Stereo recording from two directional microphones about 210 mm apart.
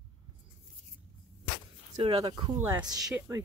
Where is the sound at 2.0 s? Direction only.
25° right (ahead or behind).